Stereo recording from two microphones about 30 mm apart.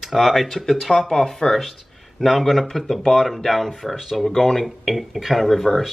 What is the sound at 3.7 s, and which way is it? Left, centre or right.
Speech, centre.